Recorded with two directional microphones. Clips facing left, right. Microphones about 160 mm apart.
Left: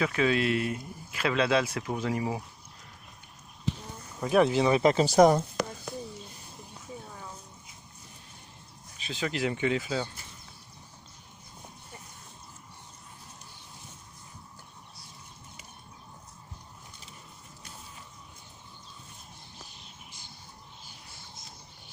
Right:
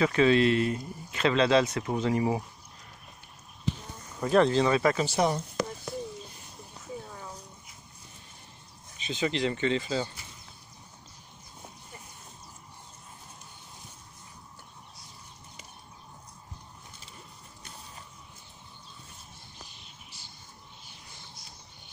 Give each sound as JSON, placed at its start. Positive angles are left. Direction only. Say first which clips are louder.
{"t": 0.0, "sound": "speech", "louder": "right 4 dB", "side_deg": 5}
{"t": 4.2, "sound": "speech", "louder": "right 1 dB", "side_deg": 10}
{"t": 4.9, "sound": "speech", "louder": "left 7 dB", "side_deg": 40}
{"t": 8.9, "sound": "speech", "louder": "right 3 dB", "side_deg": 0}